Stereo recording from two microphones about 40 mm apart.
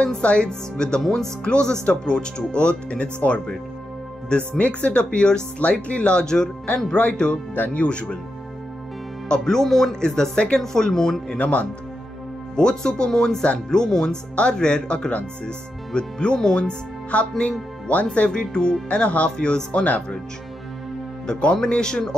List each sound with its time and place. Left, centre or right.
0.0 s speech: left
4.4 s speech: left
6.2 s speech: centre
9.3 s speech: centre
10.6 s speech: centre
11.3 s speech: left
12.5 s speech: centre
17.4 s speech: left
21.3 s speech: left